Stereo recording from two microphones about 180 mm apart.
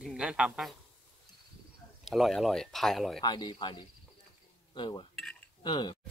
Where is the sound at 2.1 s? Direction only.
Centre (ahead or behind).